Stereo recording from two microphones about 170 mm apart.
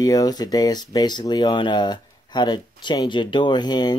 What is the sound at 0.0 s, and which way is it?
Speech, 20° left (ahead or behind).